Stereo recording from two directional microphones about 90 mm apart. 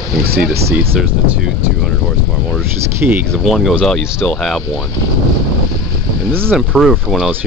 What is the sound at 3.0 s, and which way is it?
Speech, 15° right (ahead or behind).